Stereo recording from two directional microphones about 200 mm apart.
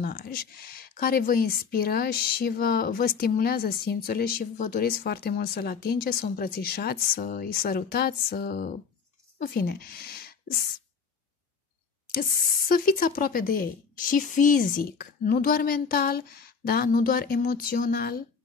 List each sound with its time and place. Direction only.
0.0 s a woman's voice: 50° left (ahead or behind)
12.1 s a woman's voice: 45° left (ahead or behind)